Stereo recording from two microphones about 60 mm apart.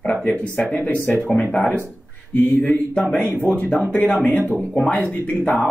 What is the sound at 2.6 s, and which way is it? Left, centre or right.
Speech, left.